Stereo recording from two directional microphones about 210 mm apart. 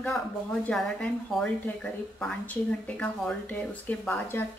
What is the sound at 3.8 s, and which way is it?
Speech, 10° left (ahead or behind).